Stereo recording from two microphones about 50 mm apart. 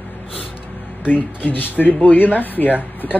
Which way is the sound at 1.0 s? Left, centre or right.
Left.